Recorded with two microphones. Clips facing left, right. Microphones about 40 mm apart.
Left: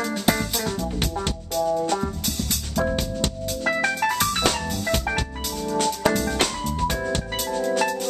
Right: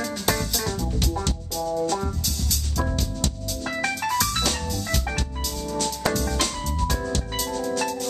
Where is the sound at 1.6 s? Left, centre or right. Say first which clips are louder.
Even; left.